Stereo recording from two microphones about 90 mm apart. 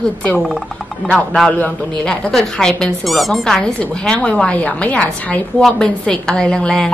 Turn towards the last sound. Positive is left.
turn(degrees=10)  # may be behind; listen again after turning